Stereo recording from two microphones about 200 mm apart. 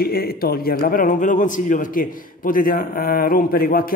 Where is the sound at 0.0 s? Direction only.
50° left (ahead or behind).